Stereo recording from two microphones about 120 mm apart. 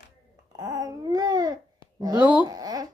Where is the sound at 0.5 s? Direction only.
30° right (ahead or behind).